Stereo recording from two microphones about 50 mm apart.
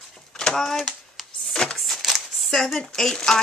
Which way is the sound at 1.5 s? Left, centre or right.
Centre.